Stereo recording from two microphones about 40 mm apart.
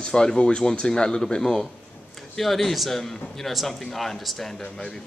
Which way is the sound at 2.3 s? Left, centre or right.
Centre.